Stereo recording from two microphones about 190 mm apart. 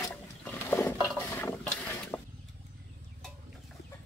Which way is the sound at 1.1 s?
10° left (ahead or behind).